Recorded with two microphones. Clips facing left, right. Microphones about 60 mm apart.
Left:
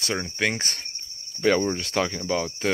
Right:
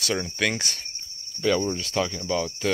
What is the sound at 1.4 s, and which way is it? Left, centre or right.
Speech, left.